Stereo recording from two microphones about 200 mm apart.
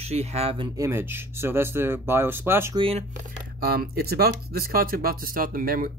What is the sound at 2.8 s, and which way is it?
Speech, 30° right (ahead or behind).